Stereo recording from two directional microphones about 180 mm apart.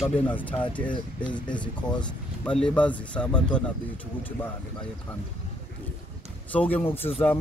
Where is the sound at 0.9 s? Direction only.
25° left (ahead or behind).